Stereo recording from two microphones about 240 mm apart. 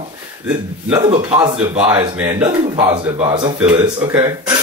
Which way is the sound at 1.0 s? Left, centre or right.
Centre.